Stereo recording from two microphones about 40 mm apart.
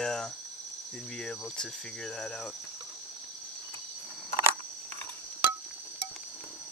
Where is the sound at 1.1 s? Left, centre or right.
Centre.